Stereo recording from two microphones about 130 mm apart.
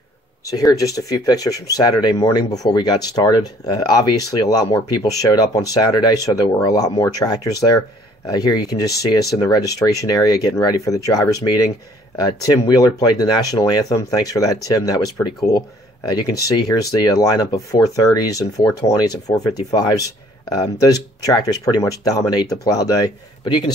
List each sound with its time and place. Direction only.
0.5 s speech: 25° left (ahead or behind)
20.5 s speech: 30° left (ahead or behind)